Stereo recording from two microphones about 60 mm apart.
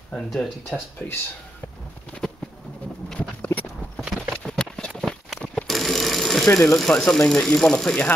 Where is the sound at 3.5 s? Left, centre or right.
Left.